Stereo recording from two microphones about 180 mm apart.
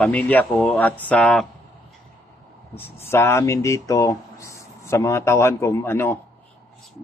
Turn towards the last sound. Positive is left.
turn(degrees=15)  # may be behind; listen again after turning